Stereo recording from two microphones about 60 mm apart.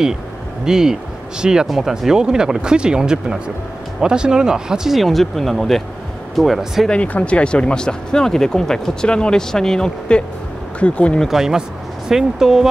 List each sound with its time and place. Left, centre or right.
0.7 s speech: centre
6.9 s speech: left
11.2 s speech: centre